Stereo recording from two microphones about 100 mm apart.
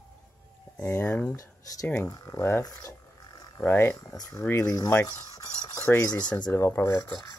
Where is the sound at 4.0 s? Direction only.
35° left (ahead or behind).